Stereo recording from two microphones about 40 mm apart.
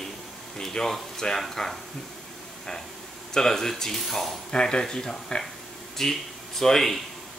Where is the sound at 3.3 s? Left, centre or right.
Centre.